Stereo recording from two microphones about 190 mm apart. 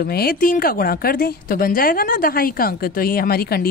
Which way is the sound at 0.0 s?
55° left (ahead or behind).